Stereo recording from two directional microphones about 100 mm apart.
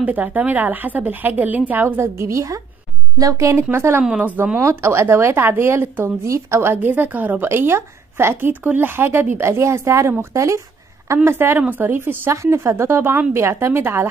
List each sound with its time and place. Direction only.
0.0 s a woman's voice: 15° right (ahead or behind)
4.0 s a woman's voice: 10° right (ahead or behind)